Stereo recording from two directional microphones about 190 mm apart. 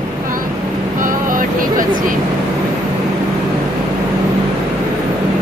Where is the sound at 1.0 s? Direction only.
45° right (ahead or behind).